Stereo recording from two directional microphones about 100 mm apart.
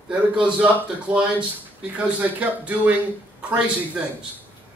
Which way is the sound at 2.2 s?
15° right (ahead or behind).